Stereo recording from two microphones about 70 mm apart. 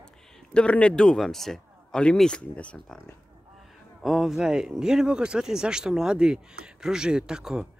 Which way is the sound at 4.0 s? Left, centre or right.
Centre.